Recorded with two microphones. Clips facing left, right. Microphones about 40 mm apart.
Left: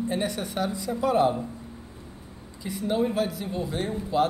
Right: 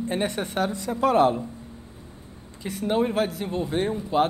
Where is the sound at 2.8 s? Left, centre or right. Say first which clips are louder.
Right 2 dB; right.